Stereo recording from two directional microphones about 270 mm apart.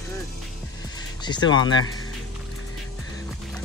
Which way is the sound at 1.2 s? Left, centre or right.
Centre.